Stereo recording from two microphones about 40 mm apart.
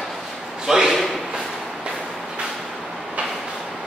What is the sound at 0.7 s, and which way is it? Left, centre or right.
Speech, centre.